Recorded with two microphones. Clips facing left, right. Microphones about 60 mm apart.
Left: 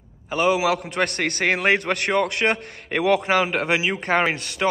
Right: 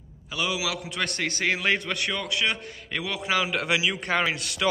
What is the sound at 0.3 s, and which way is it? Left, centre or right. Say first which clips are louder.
A man's voice: left 9 dB; left.